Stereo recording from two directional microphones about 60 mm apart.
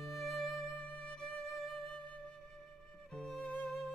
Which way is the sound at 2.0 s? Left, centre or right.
Centre.